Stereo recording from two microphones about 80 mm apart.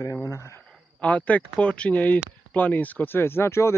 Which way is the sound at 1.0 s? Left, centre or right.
Centre.